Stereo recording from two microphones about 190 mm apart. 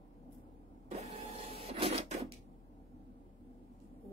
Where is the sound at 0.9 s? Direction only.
30° right (ahead or behind).